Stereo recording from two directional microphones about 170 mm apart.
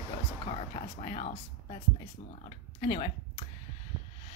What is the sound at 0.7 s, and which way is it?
Speech, 40° left (ahead or behind).